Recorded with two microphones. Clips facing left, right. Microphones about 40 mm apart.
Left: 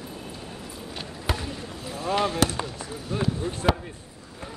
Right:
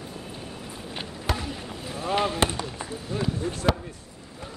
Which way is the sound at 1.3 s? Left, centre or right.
Centre.